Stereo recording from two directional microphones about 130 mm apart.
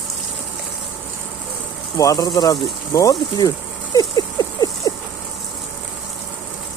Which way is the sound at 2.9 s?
25° left (ahead or behind).